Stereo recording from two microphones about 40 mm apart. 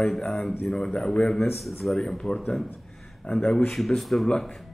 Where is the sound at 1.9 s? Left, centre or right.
Centre.